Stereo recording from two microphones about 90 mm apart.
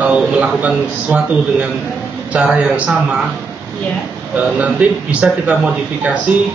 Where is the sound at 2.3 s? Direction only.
15° right (ahead or behind).